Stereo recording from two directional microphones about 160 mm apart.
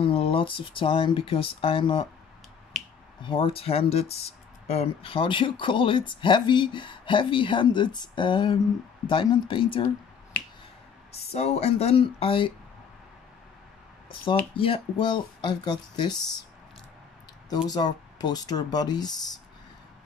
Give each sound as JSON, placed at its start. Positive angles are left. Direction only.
{"t": 0.0, "sound": "speech", "side_deg": 35}
{"t": 3.2, "sound": "speech", "side_deg": 30}
{"t": 11.1, "sound": "speech", "side_deg": 40}
{"t": 14.6, "sound": "speech", "side_deg": 35}
{"t": 17.6, "sound": "speech", "side_deg": 25}